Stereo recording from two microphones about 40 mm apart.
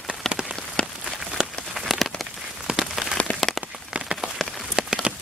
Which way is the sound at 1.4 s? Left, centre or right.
Centre.